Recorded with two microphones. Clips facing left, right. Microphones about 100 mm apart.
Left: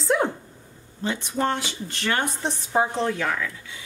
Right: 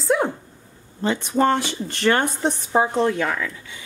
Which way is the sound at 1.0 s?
50° right (ahead or behind).